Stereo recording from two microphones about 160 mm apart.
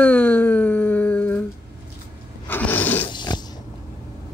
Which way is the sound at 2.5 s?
10° left (ahead or behind).